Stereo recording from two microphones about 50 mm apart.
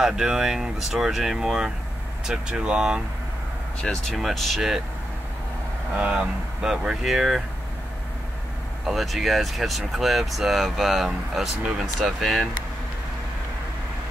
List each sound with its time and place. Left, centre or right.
0.0 s speech: centre
3.8 s speech: centre
4.2 s speech: centre
5.9 s speech: right
7.0 s speech: centre
8.8 s speech: centre